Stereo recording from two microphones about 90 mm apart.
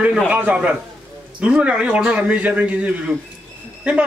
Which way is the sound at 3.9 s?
10° right (ahead or behind).